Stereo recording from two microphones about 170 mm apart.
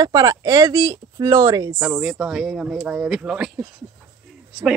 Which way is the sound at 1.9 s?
5° right (ahead or behind).